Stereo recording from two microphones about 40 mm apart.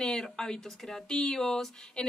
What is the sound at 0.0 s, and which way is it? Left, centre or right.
Speech, centre.